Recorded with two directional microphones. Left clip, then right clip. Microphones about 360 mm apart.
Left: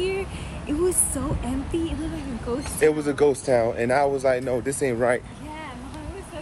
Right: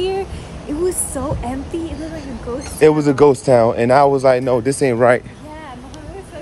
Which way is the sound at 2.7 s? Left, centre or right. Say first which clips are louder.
Right 9 dB; right.